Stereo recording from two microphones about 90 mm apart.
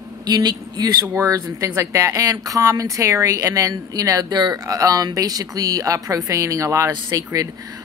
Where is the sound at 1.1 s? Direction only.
35° right (ahead or behind).